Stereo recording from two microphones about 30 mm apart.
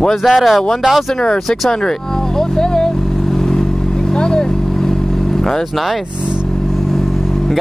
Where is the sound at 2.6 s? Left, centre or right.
Left.